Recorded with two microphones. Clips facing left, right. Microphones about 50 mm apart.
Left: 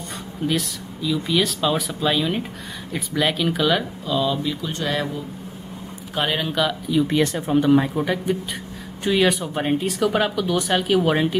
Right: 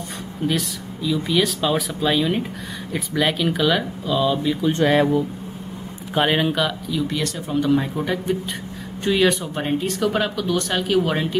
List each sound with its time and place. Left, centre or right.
0.5 s speech: centre
4.4 s speech: centre
6.1 s speech: centre
6.9 s speech: centre